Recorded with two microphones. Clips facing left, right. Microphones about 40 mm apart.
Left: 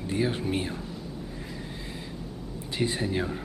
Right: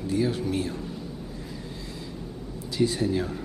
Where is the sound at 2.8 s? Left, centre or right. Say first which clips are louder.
Right 3 dB; left.